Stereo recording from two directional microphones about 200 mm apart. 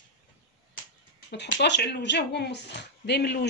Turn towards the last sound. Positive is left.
turn(degrees=55)  # may be behind; listen again after turning